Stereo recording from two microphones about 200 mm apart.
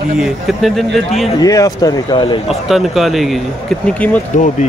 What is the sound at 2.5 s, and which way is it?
Speech, centre (ahead or behind).